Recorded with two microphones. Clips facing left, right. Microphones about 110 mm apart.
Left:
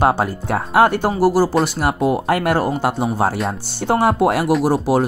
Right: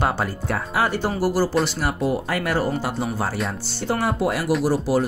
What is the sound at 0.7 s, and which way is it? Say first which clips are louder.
Speech: left 9 dB; 60° left (ahead or behind).